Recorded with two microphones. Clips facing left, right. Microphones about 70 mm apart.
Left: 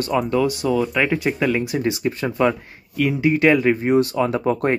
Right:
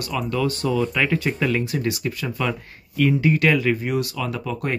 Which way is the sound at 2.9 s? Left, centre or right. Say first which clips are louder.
Even; centre.